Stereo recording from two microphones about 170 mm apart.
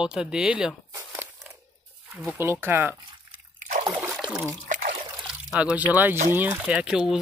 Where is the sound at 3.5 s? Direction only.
50° right (ahead or behind).